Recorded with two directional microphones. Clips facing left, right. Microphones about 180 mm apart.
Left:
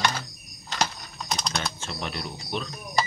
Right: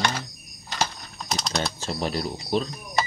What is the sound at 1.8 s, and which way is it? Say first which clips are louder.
Speech: right 6 dB; 35° right (ahead or behind).